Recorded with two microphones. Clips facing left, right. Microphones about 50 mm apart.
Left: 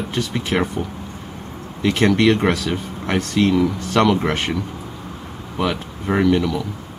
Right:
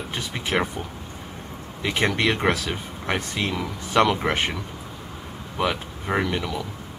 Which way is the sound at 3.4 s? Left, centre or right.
Centre.